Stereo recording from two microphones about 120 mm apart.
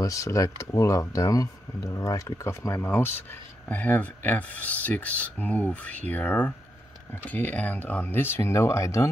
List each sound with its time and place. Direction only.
0.0 s speech: 25° left (ahead or behind)